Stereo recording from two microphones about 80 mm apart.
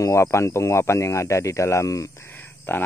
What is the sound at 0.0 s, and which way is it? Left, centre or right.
Speech, left.